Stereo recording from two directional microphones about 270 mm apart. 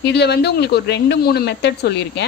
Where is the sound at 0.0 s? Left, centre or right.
Left.